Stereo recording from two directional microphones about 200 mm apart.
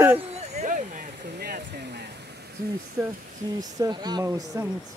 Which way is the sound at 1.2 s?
55° right (ahead or behind).